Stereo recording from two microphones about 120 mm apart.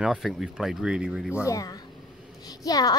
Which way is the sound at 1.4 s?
30° left (ahead or behind).